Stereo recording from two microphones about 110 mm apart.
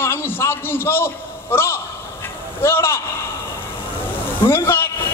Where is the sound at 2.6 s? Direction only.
25° left (ahead or behind).